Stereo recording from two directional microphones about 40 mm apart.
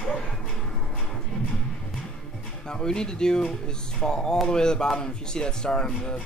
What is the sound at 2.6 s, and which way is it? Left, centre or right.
Speech, centre.